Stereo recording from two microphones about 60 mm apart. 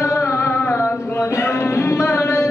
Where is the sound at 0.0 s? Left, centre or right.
Left.